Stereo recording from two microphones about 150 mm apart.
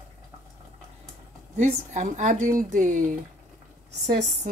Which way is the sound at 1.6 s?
55° right (ahead or behind).